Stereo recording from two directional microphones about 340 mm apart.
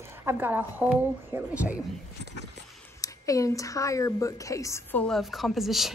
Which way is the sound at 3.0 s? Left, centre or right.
Centre.